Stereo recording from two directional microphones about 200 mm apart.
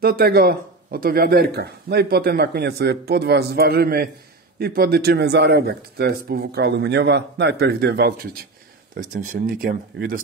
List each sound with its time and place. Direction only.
0.0 s speech: 50° right (ahead or behind)
9.1 s speech: 40° right (ahead or behind)